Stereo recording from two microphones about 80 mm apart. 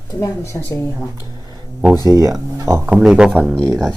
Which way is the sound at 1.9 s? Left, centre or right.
Right.